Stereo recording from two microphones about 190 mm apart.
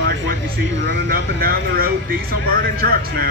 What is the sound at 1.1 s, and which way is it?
Speech, 50° right (ahead or behind).